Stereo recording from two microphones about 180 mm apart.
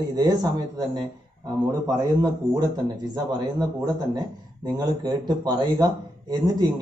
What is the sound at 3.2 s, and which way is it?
Speech, 20° right (ahead or behind).